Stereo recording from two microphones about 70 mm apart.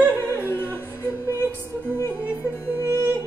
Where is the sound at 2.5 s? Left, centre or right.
Left.